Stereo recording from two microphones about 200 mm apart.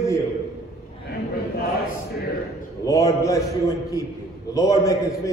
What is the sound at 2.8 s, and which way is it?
A man's voice, 15° left (ahead or behind).